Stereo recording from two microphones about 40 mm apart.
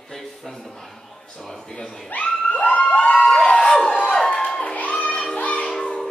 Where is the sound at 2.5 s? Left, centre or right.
Left.